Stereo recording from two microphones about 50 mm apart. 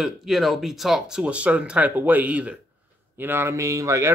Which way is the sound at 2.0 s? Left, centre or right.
Right.